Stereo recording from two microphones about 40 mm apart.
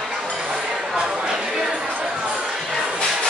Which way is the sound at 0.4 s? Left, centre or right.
Right.